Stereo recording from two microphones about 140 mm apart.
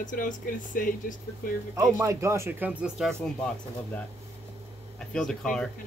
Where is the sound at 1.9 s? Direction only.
20° right (ahead or behind).